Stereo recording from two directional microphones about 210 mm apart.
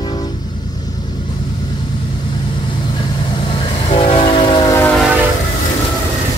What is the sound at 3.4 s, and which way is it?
Train, 25° left (ahead or behind).